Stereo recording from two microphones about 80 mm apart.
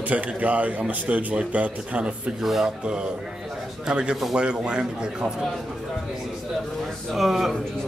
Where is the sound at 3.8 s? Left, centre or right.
Centre.